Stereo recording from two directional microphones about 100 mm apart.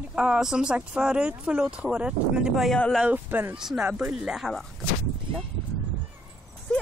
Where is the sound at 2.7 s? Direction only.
10° left (ahead or behind).